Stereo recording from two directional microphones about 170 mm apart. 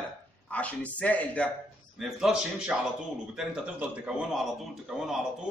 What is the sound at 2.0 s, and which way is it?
A man's voice, 5° right (ahead or behind).